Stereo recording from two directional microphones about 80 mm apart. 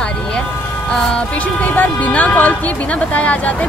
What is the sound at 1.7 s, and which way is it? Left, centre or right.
Speech, left.